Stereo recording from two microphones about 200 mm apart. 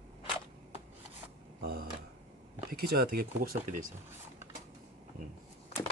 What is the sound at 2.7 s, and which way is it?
Speech, 50° right (ahead or behind).